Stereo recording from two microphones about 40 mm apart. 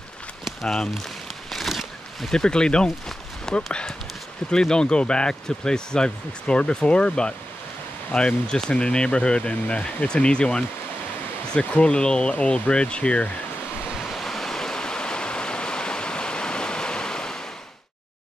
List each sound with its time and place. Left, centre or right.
1.5 s a sound: centre
2.3 s speech: centre
13.9 s waves: centre
14.2 s stream: centre